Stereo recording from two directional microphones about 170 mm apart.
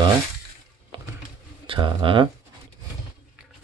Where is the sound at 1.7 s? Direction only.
30° right (ahead or behind).